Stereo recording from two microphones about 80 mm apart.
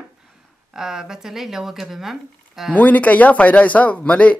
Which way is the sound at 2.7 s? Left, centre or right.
Centre.